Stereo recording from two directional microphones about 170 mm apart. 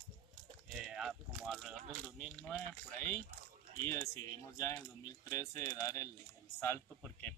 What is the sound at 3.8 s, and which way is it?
Speech, 15° left (ahead or behind).